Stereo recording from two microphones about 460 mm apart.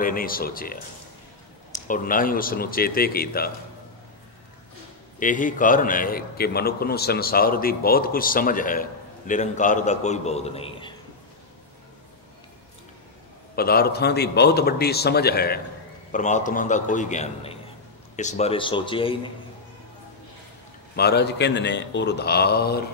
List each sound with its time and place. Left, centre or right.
0.0 s a man's voice: centre
1.9 s a man's voice: centre
5.2 s a man's voice: centre
13.6 s a man's voice: centre
20.9 s a man's voice: left